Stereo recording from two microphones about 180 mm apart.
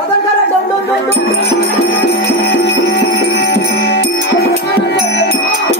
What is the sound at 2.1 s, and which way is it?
Music, 65° left (ahead or behind).